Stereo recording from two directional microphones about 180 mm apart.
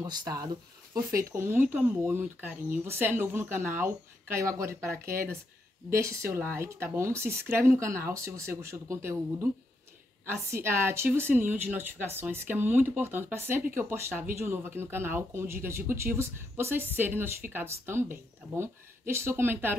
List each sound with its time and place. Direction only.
0.0 s speech: 20° right (ahead or behind)